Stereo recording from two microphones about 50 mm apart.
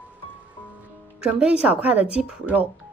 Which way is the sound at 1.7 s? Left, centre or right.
Right.